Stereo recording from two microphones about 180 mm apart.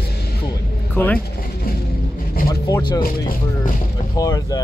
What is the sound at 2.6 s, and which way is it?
Speech, 20° left (ahead or behind).